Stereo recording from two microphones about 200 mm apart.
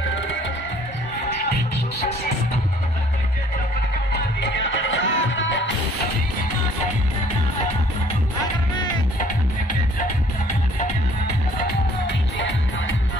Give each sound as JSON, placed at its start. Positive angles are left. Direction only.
{"t": 4.1, "sound": "music", "side_deg": 60}
{"t": 9.2, "sound": "music", "side_deg": 40}